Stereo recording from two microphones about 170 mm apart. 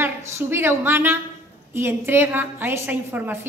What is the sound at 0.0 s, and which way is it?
A woman's voice, 15° right (ahead or behind).